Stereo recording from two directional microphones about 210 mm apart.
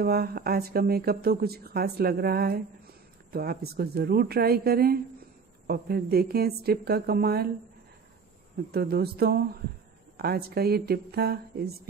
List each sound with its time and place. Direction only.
0.0 s speech: 45° right (ahead or behind)
8.7 s speech: 50° right (ahead or behind)